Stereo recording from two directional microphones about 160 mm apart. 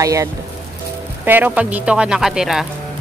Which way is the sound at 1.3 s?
10° right (ahead or behind).